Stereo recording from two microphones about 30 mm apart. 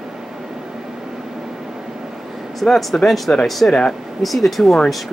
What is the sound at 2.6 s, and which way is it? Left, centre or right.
Speech, centre.